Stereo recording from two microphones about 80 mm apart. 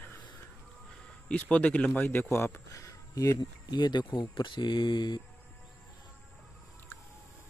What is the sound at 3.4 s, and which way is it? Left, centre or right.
Speech, left.